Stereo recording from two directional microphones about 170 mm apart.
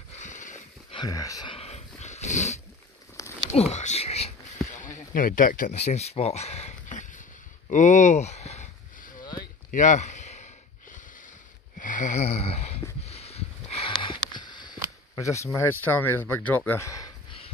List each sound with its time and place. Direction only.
0.2 s a sound: 45° left (ahead or behind)
0.9 s speech: 20° left (ahead or behind)
1.5 s dog: 40° left (ahead or behind)
3.5 s speech: 40° left (ahead or behind)
4.6 s a sound: 50° left (ahead or behind)
14.3 s speech: 25° left (ahead or behind)